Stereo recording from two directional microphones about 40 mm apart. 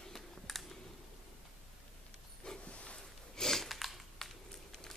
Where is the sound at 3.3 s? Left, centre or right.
Centre.